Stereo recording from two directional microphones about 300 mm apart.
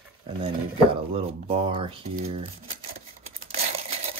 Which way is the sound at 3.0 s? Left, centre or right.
Right.